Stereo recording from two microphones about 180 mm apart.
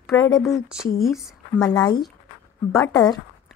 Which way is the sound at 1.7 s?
25° left (ahead or behind).